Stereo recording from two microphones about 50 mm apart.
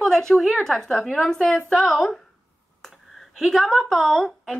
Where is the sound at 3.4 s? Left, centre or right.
Centre.